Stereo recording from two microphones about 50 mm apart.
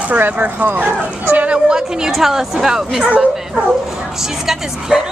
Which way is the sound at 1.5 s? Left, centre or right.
Centre.